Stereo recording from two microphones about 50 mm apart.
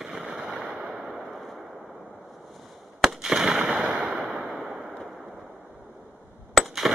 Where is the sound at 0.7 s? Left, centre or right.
Centre.